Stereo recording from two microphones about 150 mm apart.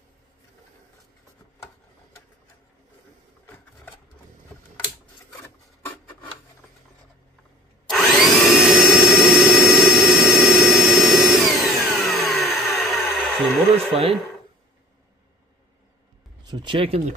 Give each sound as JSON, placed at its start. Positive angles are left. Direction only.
{"t": 7.8, "sound": "vacuum cleaner", "side_deg": 0}
{"t": 16.4, "sound": "speech", "side_deg": -35}